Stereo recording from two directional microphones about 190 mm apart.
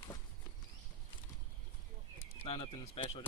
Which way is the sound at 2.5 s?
30° left (ahead or behind).